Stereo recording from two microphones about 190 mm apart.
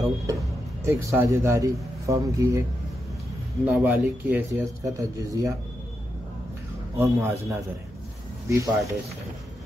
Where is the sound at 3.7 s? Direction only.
10° right (ahead or behind).